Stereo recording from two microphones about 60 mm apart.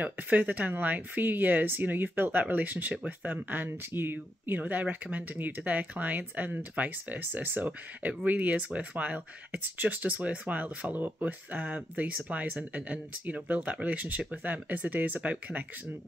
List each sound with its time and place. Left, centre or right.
0.0 s speech: right
2.9 s speech: centre
3.3 s speech: right